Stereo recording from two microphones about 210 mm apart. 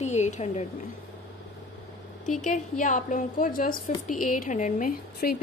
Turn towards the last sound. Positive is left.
turn(degrees=40)  # may be behind; listen again after turning